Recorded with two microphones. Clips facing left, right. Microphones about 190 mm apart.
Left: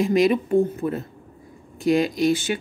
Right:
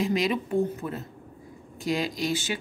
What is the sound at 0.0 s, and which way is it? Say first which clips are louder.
Speech: left 7 dB; 50° left (ahead or behind).